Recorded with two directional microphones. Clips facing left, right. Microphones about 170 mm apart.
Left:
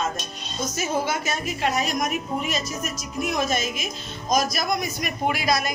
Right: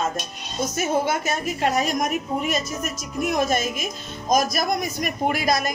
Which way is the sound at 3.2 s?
50° right (ahead or behind).